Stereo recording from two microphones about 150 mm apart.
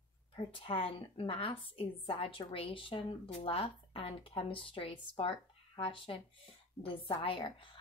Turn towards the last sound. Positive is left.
turn(degrees=35)  # may be behind; listen again after turning